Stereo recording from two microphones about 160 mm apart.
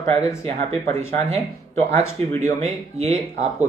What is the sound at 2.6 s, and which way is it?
Speech, 40° right (ahead or behind).